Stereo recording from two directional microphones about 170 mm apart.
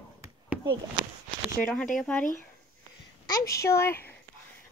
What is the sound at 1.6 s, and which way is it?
Speech, 5° left (ahead or behind).